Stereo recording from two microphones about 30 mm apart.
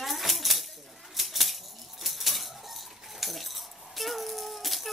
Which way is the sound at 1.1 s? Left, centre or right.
Centre.